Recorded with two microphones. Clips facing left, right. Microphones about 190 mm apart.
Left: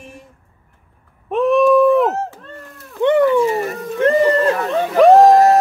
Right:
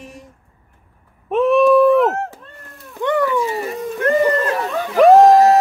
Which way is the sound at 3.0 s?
25° left (ahead or behind).